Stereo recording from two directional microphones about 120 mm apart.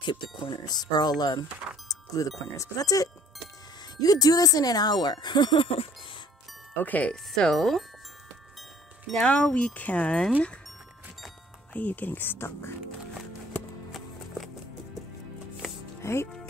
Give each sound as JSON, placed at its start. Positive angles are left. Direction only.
{"t": 0.0, "sound": "speech", "side_deg": 40}
{"t": 6.8, "sound": "speech", "side_deg": 15}
{"t": 9.0, "sound": "speech", "side_deg": 5}
{"t": 11.7, "sound": "speech", "side_deg": 15}
{"t": 16.0, "sound": "music", "side_deg": 20}